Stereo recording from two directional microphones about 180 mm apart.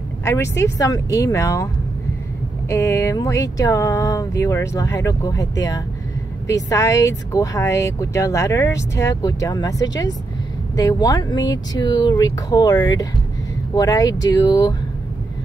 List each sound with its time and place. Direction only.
0.2 s speech: 15° left (ahead or behind)
2.7 s speech: 15° left (ahead or behind)